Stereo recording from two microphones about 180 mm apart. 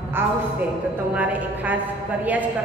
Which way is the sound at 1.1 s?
10° right (ahead or behind).